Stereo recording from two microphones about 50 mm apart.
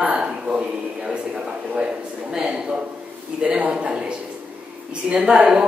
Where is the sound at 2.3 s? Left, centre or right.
Centre.